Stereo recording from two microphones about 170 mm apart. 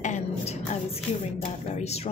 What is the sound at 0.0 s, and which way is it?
Music, 40° left (ahead or behind).